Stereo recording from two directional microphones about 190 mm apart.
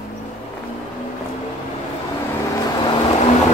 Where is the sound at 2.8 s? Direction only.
30° left (ahead or behind).